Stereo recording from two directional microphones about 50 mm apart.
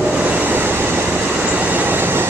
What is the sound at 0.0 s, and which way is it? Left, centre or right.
Train, right.